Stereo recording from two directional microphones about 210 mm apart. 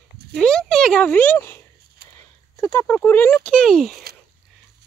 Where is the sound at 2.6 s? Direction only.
10° left (ahead or behind).